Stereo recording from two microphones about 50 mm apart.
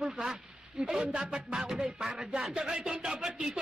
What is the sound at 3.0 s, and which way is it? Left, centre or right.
Speech, centre.